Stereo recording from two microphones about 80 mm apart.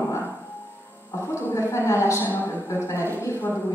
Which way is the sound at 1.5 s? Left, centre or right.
Left.